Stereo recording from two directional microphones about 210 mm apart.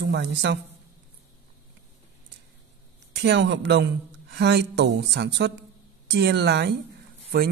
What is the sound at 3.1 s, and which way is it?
Speech, 55° right (ahead or behind).